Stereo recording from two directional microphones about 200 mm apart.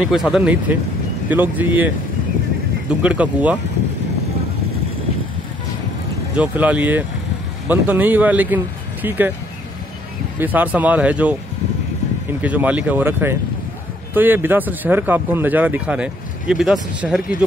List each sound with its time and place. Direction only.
0.0 s speech: centre (ahead or behind)
3.0 s speech: 5° right (ahead or behind)
6.3 s speech: 5° right (ahead or behind)
10.4 s speech: 10° right (ahead or behind)